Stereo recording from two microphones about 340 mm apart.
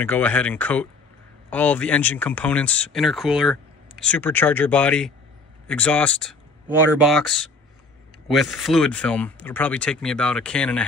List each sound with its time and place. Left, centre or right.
0.0 s speech: centre